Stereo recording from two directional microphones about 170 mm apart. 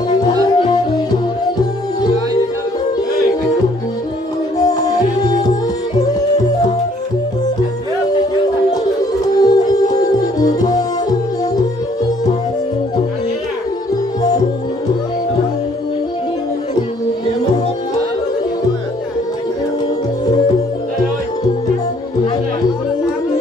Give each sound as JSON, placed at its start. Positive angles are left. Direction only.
{"t": 0.1, "sound": "music", "side_deg": 25}
{"t": 4.6, "sound": "music", "side_deg": 20}
{"t": 9.4, "sound": "music", "side_deg": 20}